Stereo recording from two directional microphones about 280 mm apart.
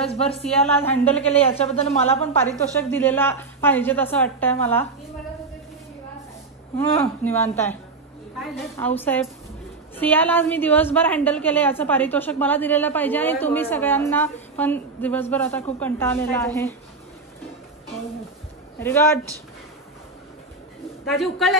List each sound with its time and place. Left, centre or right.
0.1 s speech: left
0.8 s a woman's voice: centre
1.3 s speech: left
2.8 s a woman's voice: centre
7.0 s a woman's voice: centre
8.7 s a woman's voice: centre
18.8 s a woman's voice: centre
21.1 s a woman's voice: centre